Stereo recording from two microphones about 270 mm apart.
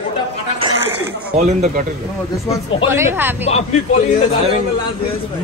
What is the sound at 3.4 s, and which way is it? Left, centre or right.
Speech, left.